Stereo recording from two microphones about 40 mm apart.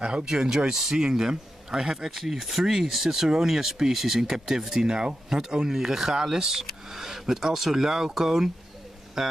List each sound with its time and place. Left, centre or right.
0.0 s speech: right